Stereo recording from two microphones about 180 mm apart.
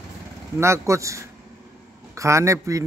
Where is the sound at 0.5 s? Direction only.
15° right (ahead or behind).